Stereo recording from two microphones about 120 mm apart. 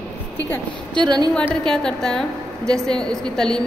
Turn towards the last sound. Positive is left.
turn(degrees=5)  # may be behind; listen again after turning